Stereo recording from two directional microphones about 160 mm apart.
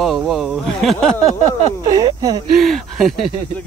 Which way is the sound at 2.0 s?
25° right (ahead or behind).